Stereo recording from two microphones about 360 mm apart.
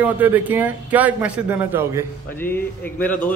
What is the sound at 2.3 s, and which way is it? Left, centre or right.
Speech, centre.